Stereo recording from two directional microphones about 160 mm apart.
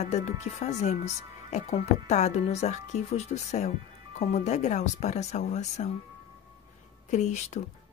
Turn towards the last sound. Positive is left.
turn(degrees=45)  # may be behind; listen again after turning